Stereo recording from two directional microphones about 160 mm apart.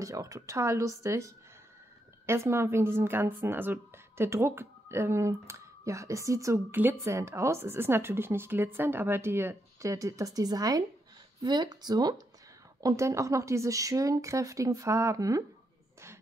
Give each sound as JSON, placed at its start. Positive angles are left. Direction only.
{"t": 0.0, "sound": "a woman's voice", "side_deg": -20}